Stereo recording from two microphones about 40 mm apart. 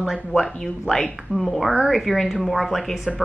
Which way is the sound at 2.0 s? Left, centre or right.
Centre.